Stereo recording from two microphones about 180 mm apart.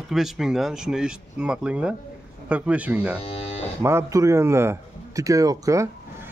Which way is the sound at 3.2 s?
35° left (ahead or behind).